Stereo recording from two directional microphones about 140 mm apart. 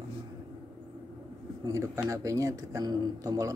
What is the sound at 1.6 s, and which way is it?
Speech, 20° right (ahead or behind).